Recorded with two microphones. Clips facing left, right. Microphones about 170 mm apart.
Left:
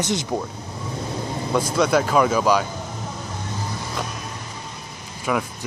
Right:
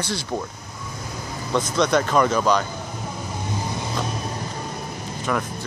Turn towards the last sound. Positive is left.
turn(degrees=5)  # may be behind; listen again after turning